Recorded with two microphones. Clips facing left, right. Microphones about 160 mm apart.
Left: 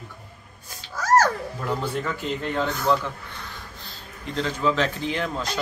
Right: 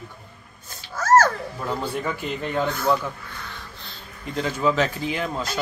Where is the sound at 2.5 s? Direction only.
10° right (ahead or behind).